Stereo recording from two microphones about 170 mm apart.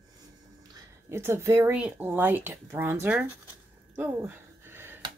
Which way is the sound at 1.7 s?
10° right (ahead or behind).